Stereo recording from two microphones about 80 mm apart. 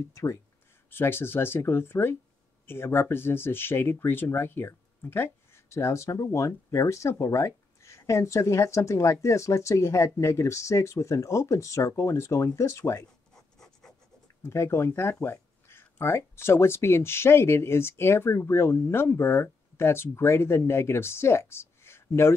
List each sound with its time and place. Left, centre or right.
0.1 s speech: left
13.3 s writing: centre
14.4 s speech: left